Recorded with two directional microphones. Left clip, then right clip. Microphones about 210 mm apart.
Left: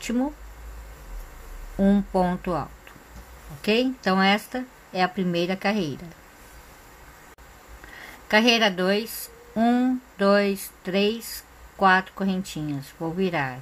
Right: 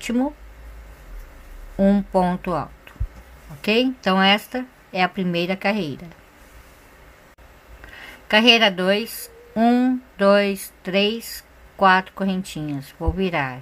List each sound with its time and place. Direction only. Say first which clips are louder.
0.0 s speech: right 4 dB; 15° right (ahead or behind)
1.8 s speech: right 4 dB; 15° right (ahead or behind)
7.9 s speech: right 3 dB; 10° right (ahead or behind)